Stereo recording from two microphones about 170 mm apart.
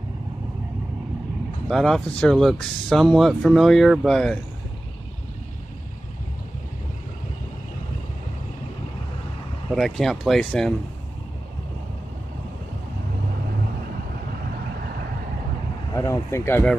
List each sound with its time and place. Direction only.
1.7 s speech: centre (ahead or behind)
9.7 s speech: centre (ahead or behind)
15.9 s speech: 20° left (ahead or behind)